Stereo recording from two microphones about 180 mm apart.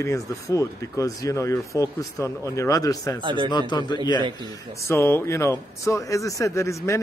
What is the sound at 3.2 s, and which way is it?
Speech, 25° right (ahead or behind).